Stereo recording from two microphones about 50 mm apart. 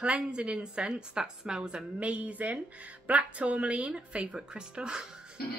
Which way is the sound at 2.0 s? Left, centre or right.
Right.